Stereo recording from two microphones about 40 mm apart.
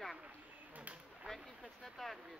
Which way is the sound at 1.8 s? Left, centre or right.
Centre.